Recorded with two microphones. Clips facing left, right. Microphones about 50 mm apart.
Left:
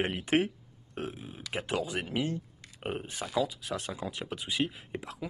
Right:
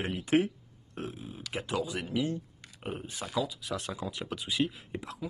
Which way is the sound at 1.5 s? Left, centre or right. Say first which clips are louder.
Left 1 dB; left.